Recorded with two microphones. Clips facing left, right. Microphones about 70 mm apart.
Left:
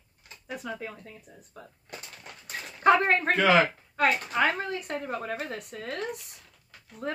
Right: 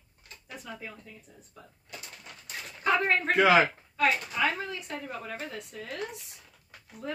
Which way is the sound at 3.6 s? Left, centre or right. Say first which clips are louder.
Left 1 dB; left.